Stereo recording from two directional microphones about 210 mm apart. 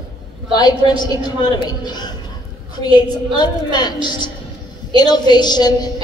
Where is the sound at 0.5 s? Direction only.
20° left (ahead or behind).